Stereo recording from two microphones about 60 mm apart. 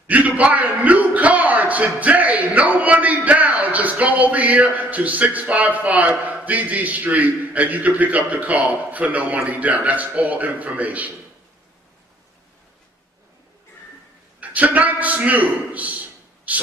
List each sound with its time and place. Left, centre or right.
0.0 s a man's voice: right
14.4 s a man's voice: right